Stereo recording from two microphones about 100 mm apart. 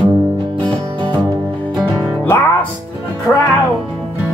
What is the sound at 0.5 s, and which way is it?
Music, 15° left (ahead or behind).